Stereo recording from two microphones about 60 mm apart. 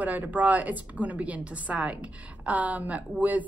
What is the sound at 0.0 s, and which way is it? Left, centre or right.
A woman's voice, right.